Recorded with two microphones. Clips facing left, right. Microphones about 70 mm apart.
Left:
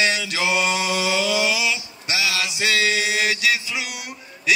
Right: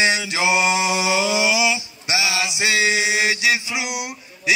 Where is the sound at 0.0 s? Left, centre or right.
Centre.